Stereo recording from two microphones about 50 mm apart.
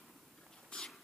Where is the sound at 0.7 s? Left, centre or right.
Left.